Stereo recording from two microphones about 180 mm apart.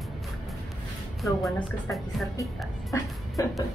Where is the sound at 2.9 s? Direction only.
15° left (ahead or behind).